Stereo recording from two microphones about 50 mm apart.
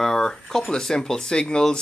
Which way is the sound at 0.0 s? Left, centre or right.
Centre.